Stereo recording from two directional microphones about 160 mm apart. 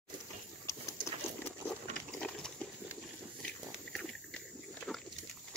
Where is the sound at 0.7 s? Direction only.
20° left (ahead or behind).